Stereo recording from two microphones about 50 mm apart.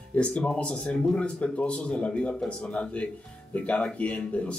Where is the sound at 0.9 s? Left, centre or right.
Centre.